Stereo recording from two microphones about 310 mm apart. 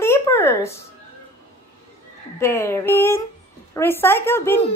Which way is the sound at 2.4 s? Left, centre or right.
Centre.